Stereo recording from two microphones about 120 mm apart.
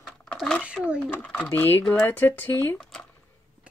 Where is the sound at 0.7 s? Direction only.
10° right (ahead or behind).